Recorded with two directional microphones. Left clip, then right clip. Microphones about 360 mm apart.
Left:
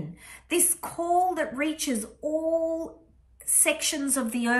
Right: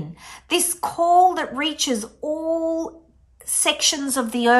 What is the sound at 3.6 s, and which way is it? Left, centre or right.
A woman's voice, centre.